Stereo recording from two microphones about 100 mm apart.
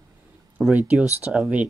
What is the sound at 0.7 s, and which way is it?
Speech, 15° right (ahead or behind).